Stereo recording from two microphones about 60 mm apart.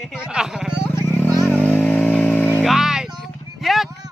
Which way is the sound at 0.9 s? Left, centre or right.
Left.